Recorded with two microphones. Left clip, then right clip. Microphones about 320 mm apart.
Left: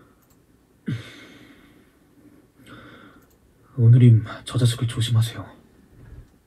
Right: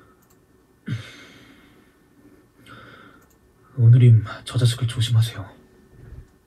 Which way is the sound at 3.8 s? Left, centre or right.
Right.